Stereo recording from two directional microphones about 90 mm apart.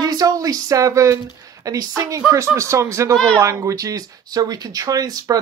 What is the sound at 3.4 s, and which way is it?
Speech, 35° right (ahead or behind).